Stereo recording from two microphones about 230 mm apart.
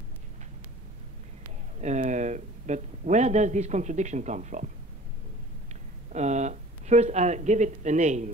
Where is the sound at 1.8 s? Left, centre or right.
Right.